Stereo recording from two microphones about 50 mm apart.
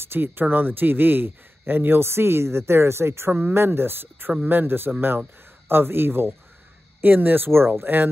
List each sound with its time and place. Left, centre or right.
0.0 s speech: right